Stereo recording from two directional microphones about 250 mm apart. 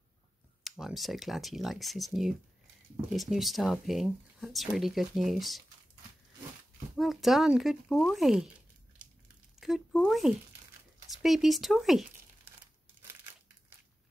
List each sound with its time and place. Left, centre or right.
0.7 s speech: centre
7.0 s speech: centre
9.6 s speech: centre